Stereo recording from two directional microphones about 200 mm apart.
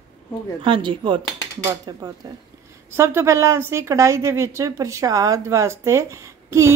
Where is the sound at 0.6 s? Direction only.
25° right (ahead or behind).